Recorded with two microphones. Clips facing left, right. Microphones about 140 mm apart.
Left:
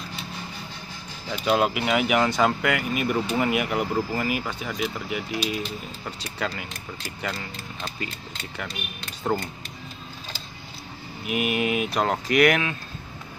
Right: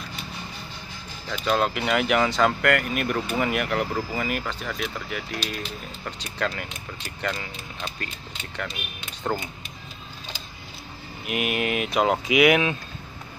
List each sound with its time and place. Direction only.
1.3 s speech: 10° left (ahead or behind)
9.2 s speech: centre (ahead or behind)
11.2 s speech: centre (ahead or behind)